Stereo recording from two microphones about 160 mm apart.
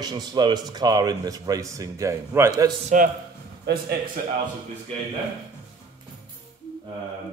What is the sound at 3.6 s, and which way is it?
Speech, 75° right (ahead or behind).